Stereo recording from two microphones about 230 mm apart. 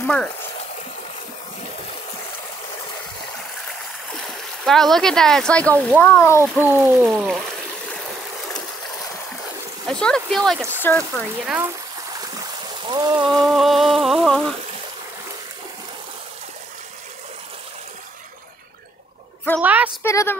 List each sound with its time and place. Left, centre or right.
0.0 s speech: centre
4.6 s speech: centre
6.4 s speech: centre
9.8 s speech: centre
12.2 s stream: centre
13.2 s speech: centre
19.6 s a woman's voice: centre
20.0 s a woman's voice: centre